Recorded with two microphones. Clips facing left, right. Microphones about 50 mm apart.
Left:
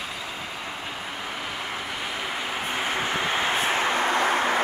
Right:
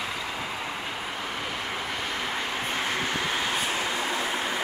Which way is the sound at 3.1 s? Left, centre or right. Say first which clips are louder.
Left 3 dB; left.